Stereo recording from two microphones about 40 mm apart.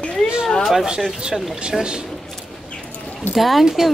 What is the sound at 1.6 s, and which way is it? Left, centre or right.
Speech, centre.